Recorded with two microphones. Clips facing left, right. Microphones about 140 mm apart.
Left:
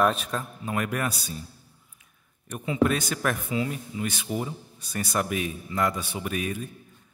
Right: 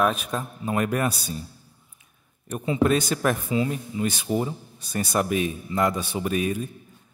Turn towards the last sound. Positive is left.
turn(degrees=-30)  # may be behind; listen again after turning